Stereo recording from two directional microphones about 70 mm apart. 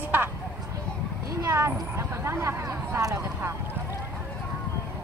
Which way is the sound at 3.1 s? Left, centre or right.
Right.